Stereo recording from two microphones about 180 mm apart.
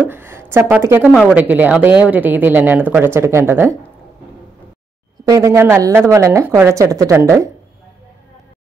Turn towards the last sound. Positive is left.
turn(degrees=-15)  # may be behind; listen again after turning